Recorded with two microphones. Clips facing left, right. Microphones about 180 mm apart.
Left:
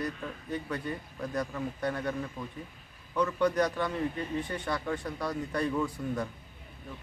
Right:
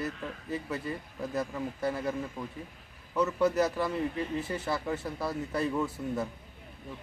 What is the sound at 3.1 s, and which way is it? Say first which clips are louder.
A man's voice: right 1 dB; 5° right (ahead or behind).